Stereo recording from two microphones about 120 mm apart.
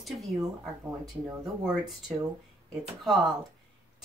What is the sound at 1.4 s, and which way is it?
Speech, centre (ahead or behind).